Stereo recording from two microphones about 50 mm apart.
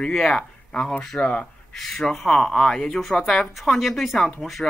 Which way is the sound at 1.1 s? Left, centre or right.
Left.